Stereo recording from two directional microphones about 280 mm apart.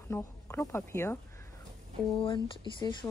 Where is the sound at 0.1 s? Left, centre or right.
Centre.